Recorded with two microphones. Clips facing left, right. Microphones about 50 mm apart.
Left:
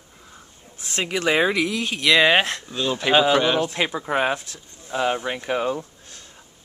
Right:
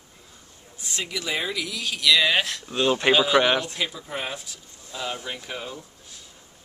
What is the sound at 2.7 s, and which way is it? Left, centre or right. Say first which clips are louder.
Speech: right 2 dB; centre.